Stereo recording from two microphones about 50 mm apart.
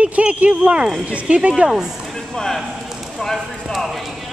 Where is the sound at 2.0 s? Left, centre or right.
Centre.